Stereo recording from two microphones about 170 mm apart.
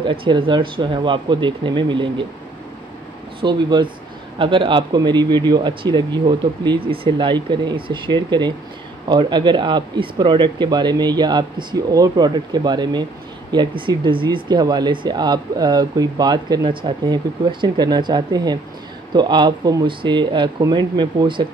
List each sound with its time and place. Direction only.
0.0 s speech: 30° right (ahead or behind)
3.3 s speech: 30° right (ahead or behind)